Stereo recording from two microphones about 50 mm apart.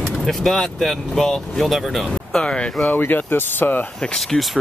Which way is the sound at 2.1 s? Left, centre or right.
Centre.